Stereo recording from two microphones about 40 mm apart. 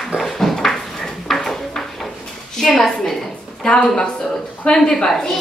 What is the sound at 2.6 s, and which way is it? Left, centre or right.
A woman's voice, centre.